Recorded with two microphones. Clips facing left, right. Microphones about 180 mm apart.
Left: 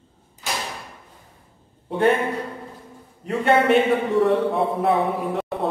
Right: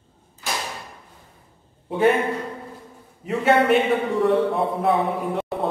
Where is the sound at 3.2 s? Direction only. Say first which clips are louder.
Even; centre (ahead or behind).